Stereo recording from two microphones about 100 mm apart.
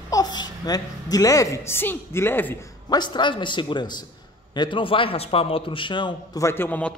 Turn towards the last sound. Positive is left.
turn(degrees=15)  # may be behind; listen again after turning